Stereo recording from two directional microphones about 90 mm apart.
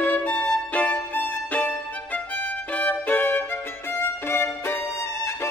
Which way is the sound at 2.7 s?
20° left (ahead or behind).